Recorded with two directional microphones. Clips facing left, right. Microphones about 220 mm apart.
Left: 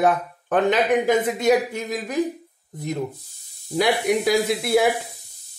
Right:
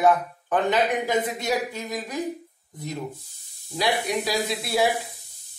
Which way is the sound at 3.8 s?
50° left (ahead or behind).